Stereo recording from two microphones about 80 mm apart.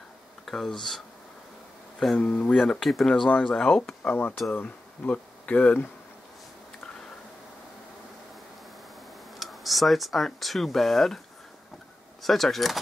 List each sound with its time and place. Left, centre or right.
0.5 s speech: centre
2.1 s speech: centre
2.7 s speech: centre
3.3 s speech: centre
4.1 s speech: left
9.4 s speech: centre
12.2 s speech: centre